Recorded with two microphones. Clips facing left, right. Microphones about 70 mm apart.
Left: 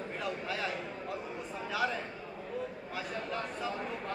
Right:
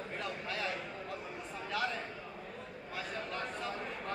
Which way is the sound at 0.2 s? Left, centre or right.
Centre.